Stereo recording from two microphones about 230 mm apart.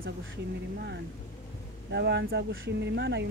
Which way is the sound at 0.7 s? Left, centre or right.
Right.